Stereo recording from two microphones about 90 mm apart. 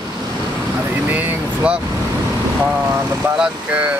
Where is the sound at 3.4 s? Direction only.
15° right (ahead or behind).